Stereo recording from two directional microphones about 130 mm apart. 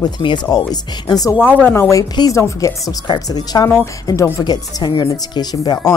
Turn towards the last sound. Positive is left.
turn(degrees=30)  # may be behind; listen again after turning